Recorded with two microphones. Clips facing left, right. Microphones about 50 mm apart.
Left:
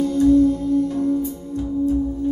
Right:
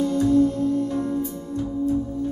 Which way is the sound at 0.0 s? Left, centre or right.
Right.